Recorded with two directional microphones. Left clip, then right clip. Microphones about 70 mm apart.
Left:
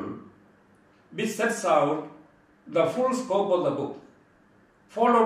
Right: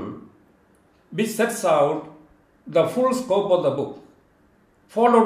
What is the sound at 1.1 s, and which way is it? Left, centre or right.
Speech, left.